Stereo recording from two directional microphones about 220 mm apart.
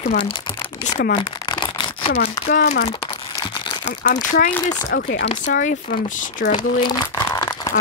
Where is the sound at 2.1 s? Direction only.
45° left (ahead or behind).